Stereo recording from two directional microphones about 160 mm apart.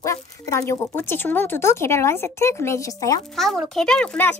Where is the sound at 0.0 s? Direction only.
20° left (ahead or behind).